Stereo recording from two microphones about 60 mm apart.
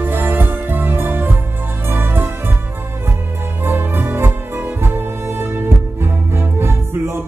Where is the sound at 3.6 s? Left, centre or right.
Right.